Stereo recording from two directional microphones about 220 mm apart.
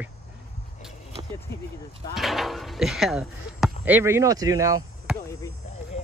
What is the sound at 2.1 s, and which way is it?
Speech, centre (ahead or behind).